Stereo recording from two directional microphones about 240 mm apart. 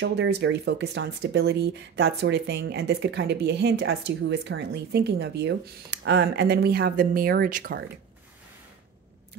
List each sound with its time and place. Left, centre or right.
0.0 s speech: right